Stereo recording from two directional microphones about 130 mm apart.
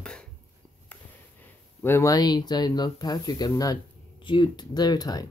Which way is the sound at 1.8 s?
20° left (ahead or behind).